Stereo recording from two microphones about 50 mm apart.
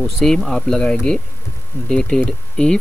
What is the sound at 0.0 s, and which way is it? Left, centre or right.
Speech, centre.